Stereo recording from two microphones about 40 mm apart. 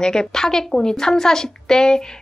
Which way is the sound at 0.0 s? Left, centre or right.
Centre.